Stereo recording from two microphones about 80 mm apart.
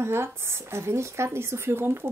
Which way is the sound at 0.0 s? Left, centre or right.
Right.